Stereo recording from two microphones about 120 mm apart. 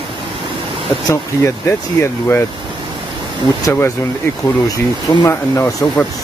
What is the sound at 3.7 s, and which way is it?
Speech, 20° left (ahead or behind).